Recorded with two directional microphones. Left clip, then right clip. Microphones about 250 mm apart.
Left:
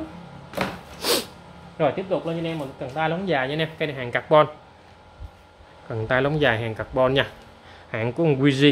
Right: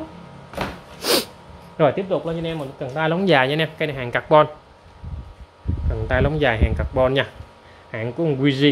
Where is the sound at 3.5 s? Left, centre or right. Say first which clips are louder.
Right 4 dB; right.